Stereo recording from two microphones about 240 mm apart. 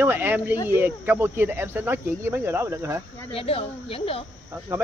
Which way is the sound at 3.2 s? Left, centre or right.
Left.